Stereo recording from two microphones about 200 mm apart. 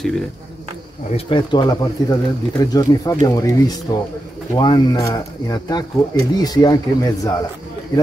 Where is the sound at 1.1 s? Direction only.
30° left (ahead or behind).